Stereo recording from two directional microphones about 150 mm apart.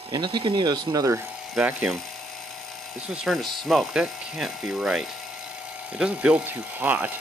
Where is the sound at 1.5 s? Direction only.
5° right (ahead or behind).